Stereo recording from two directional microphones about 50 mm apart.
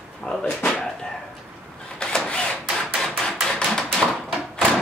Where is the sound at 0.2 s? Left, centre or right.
Centre.